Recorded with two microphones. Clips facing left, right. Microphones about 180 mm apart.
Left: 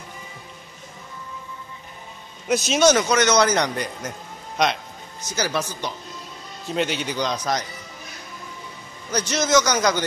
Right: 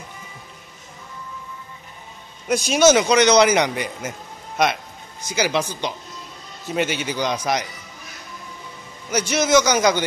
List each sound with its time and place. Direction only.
2.4 s a man's voice: centre (ahead or behind)
3.0 s speech: 15° right (ahead or behind)
5.3 s speech: 10° right (ahead or behind)
6.6 s a man's voice: 5° right (ahead or behind)
9.1 s speech: 10° right (ahead or behind)